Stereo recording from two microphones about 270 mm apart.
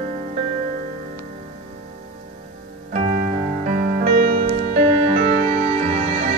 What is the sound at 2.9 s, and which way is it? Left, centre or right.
Music, right.